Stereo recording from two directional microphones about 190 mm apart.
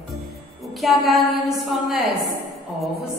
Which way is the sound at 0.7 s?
Centre (ahead or behind).